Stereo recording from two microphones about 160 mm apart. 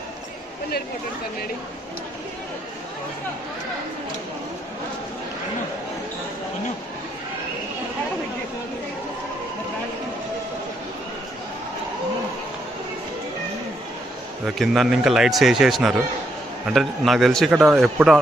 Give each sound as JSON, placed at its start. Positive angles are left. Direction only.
{"t": 14.4, "sound": "a man's voice", "side_deg": -5}